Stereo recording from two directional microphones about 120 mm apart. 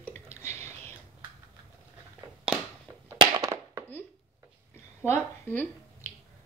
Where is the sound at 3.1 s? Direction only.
30° right (ahead or behind).